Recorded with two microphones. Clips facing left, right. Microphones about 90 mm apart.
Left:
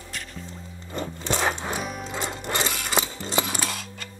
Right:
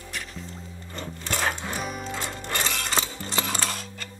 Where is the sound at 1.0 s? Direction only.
20° left (ahead or behind).